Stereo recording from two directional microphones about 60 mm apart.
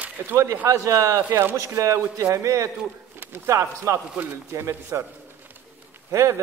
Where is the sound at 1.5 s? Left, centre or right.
Right.